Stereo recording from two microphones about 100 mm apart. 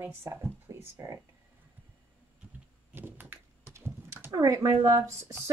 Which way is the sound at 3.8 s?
25° right (ahead or behind).